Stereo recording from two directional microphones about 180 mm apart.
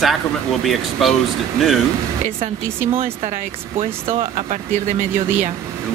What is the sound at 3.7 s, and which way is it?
Speech, 30° right (ahead or behind).